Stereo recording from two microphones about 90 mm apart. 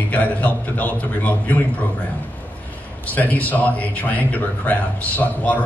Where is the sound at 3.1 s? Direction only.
15° left (ahead or behind).